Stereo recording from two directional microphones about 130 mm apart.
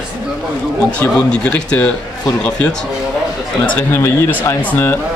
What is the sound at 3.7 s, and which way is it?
Speech, 20° left (ahead or behind).